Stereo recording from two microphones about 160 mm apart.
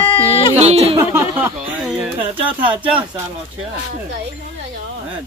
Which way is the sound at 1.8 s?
5° right (ahead or behind).